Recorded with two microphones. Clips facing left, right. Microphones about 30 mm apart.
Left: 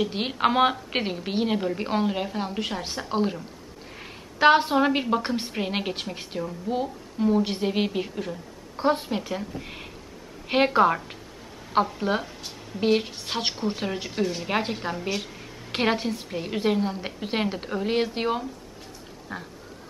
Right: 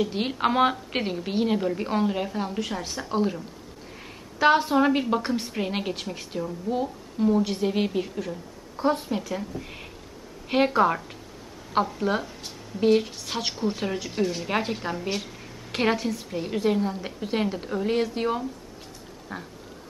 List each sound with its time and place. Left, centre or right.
0.0 s a woman's voice: centre
2.6 s a woman's voice: left
4.0 s a sound: left
4.7 s a woman's voice: centre
14.1 s a woman's voice: centre; by 18.4 s left
19.3 s a woman's voice: centre